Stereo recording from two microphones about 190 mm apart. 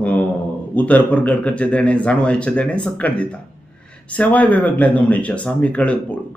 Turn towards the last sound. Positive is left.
turn(degrees=5)  # may be behind; listen again after turning